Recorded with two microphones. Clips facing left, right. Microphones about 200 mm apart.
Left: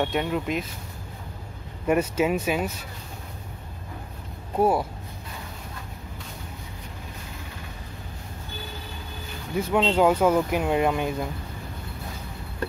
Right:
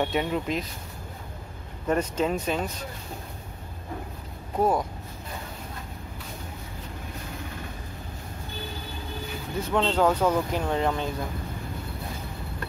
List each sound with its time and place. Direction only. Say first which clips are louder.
0.0 s speech: left 1 dB; centre (ahead or behind)
1.9 s speech: left 3 dB; 10° left (ahead or behind)
4.6 s speech: left 2 dB; 10° left (ahead or behind)
9.6 s speech: left 3 dB; 10° left (ahead or behind)